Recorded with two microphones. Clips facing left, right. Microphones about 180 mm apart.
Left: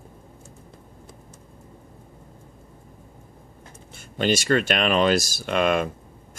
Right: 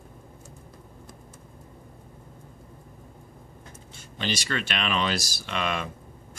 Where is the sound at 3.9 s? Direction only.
50° left (ahead or behind).